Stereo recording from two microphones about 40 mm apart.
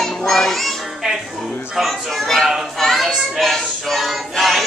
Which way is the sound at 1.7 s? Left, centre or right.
Centre.